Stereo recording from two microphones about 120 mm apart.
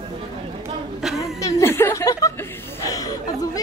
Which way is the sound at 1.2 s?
25° left (ahead or behind).